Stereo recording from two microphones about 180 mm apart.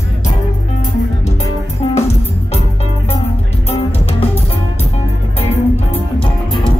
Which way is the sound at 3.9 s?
35° left (ahead or behind).